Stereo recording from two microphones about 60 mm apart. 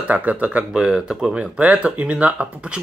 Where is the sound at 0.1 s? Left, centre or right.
Right.